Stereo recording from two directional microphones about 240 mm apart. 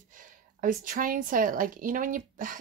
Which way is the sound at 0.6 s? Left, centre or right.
Right.